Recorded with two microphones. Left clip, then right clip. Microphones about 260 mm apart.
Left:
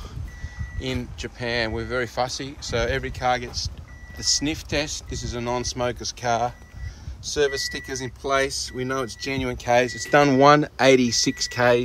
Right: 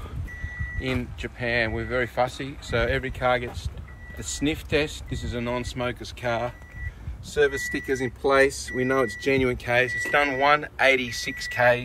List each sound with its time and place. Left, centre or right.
0.7 s speech: centre; by 11.8 s left